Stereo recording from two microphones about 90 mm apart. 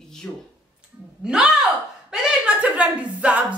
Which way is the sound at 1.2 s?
10° right (ahead or behind).